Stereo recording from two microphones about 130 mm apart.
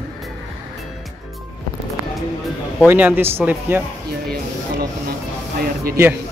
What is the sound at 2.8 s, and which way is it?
Speech, 15° right (ahead or behind).